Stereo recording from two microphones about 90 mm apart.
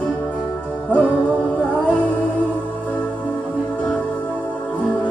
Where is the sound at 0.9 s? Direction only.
15° left (ahead or behind).